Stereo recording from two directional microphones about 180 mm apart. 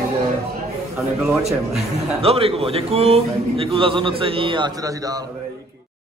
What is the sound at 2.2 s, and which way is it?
A man's voice, 35° right (ahead or behind).